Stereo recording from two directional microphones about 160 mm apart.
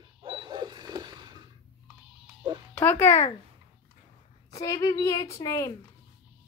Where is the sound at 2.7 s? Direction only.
10° left (ahead or behind).